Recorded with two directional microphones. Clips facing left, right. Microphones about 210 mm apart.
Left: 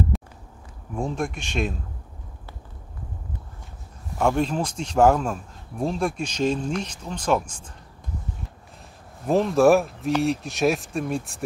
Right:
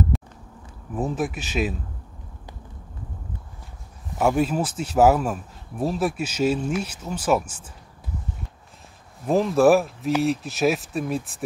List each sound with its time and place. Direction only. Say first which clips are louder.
0.1 s a sound: right 2 dB; centre (ahead or behind)
0.9 s speech: right 2 dB; 5° right (ahead or behind)
4.2 s speech: right 1 dB; 5° right (ahead or behind)
9.3 s speech: even; centre (ahead or behind)